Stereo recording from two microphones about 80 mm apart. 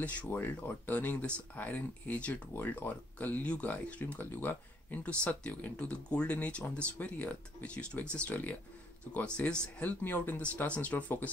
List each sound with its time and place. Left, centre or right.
0.0 s speech: centre